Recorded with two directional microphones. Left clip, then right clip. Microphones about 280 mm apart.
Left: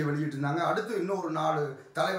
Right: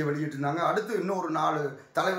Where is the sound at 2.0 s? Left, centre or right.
Centre.